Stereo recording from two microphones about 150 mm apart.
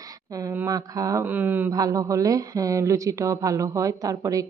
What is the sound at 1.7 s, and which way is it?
Speech, 20° right (ahead or behind).